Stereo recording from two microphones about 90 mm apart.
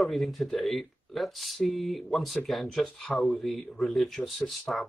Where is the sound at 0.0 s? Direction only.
Centre (ahead or behind).